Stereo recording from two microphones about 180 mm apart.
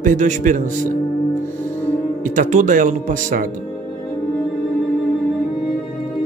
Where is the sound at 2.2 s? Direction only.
45° right (ahead or behind).